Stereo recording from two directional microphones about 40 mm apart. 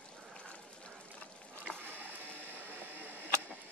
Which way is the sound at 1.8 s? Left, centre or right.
Right.